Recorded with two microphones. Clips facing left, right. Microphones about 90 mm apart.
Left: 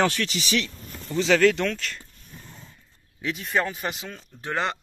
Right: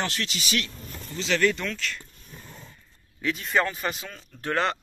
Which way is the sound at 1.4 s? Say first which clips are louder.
Left 2 dB; 90° left.